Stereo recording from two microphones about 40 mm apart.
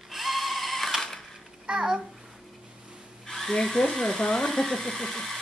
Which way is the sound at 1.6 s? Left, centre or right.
Centre.